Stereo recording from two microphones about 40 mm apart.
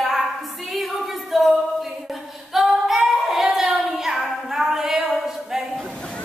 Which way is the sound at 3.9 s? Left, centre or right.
Centre.